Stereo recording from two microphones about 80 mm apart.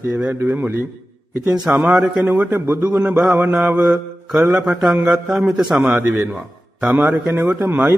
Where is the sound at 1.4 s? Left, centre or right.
Centre.